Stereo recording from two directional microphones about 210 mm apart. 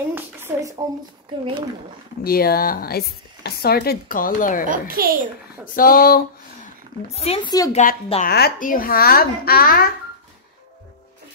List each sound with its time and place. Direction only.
0.1 s a sound: 10° right (ahead or behind)
2.2 s speech: 45° left (ahead or behind)
4.6 s a child's voice: 45° right (ahead or behind)
5.8 s speech: 45° left (ahead or behind)
7.3 s speech: 30° left (ahead or behind); by 9.8 s 45° left (ahead or behind)